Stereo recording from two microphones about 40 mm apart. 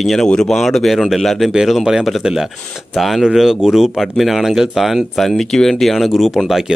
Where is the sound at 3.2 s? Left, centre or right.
Centre.